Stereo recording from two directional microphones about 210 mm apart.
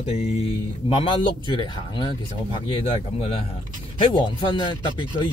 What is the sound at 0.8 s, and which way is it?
Speech, 25° left (ahead or behind).